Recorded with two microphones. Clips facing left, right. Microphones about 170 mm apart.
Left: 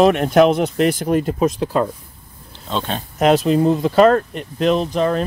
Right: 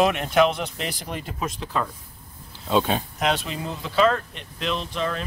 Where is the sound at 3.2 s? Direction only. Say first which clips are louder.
Left 16 dB; 45° left (ahead or behind).